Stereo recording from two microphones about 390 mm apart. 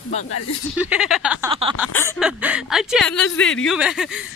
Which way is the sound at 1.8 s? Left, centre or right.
Centre.